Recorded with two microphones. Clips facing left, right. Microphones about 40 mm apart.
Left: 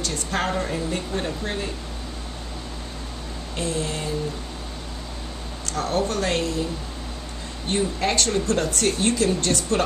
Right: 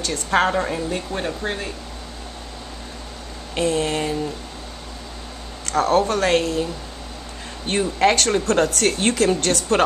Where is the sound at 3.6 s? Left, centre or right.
Right.